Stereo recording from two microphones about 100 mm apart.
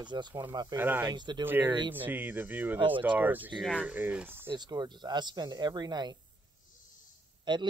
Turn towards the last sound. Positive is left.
turn(degrees=-50)  # may be behind; listen again after turning